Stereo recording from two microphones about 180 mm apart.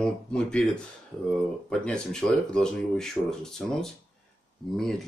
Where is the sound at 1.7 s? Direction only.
5° left (ahead or behind).